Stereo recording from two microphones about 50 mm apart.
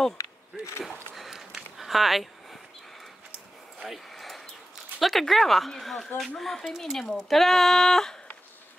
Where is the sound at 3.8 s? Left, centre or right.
Centre.